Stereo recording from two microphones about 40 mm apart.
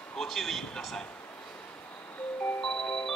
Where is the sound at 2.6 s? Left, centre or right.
Centre.